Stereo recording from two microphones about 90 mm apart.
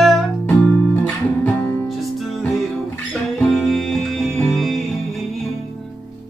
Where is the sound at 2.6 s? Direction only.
5° left (ahead or behind).